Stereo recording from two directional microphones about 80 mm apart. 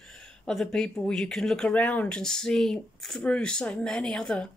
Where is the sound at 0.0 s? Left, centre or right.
Centre.